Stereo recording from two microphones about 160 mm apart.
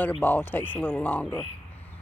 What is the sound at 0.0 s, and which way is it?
Speech, 10° left (ahead or behind).